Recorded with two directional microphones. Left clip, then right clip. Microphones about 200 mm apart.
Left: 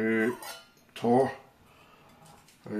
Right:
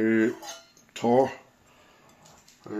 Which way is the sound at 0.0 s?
45° right (ahead or behind).